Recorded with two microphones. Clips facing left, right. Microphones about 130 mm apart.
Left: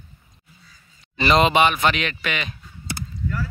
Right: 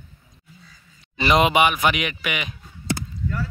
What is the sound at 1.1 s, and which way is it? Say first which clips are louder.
Speech: left 1 dB; 15° right (ahead or behind).